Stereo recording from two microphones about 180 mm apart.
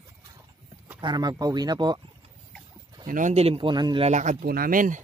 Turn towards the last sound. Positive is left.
turn(degrees=-50)  # may be behind; listen again after turning